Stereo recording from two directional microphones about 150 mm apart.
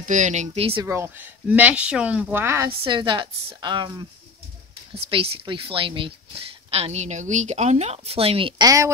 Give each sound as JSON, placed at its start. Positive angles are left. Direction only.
{"t": 0.0, "sound": "speech", "side_deg": -55}
{"t": 0.8, "sound": "speech", "side_deg": -15}
{"t": 2.9, "sound": "a woman's voice", "side_deg": -30}
{"t": 5.1, "sound": "a woman's voice", "side_deg": -40}